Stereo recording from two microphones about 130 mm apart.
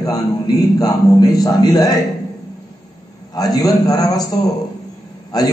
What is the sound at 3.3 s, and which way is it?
A man's voice, 30° left (ahead or behind).